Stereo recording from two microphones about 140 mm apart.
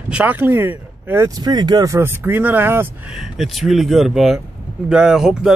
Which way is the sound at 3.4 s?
Centre (ahead or behind).